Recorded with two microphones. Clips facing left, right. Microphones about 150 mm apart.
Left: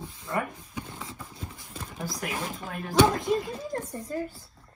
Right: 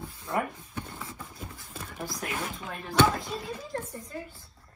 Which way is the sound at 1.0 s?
20° left (ahead or behind).